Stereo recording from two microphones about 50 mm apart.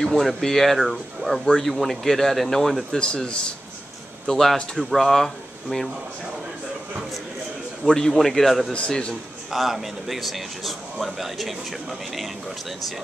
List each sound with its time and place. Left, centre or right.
0.0 s speech: centre
3.0 s a man's voice: centre
4.3 s speech: centre
7.8 s speech: centre
8.7 s a man's voice: left
9.5 s speech: centre